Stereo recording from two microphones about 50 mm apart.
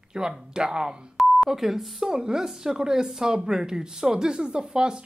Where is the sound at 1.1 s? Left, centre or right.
Centre.